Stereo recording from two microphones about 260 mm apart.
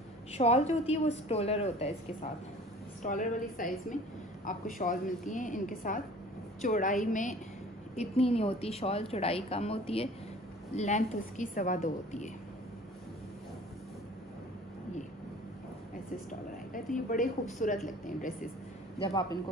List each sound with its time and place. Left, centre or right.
0.3 s a woman's voice: left
3.0 s a woman's voice: left
16.3 s a woman's voice: left
18.9 s a man's voice: centre